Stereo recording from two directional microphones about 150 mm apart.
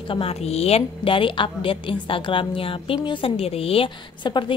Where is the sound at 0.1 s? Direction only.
40° left (ahead or behind).